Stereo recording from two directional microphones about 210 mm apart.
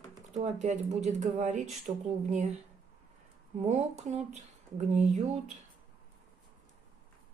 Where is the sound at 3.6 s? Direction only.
35° right (ahead or behind).